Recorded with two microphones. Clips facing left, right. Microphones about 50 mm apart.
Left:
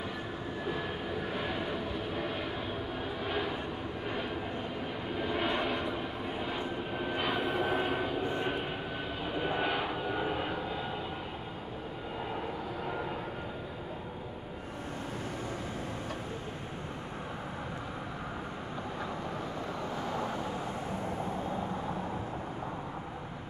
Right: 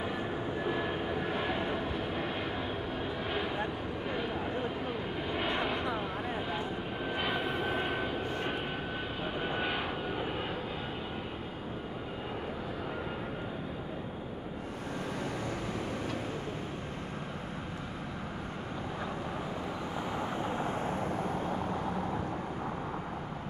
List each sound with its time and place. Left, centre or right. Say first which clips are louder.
0.7 s vehicle: right 2 dB; centre
3.0 s a sound: left 1 dB; centre
5.2 s vehicle: left 2 dB; centre
7.2 s vehicle: left 2 dB; centre
8.2 s vehicle: left 2 dB; left
9.6 s vehicle: left 2 dB; centre
20.1 s vehicle: right 2 dB; right